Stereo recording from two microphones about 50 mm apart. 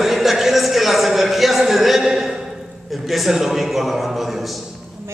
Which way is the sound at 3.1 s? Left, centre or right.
Centre.